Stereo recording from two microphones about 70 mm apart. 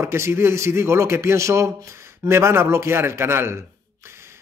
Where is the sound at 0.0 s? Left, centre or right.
Right.